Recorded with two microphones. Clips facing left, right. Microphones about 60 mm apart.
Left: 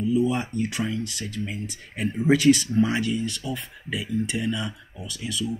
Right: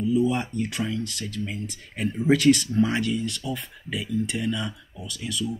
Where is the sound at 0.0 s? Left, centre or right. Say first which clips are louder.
Even; centre.